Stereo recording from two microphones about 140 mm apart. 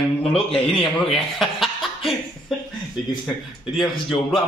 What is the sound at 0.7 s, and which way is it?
Speech, centre (ahead or behind).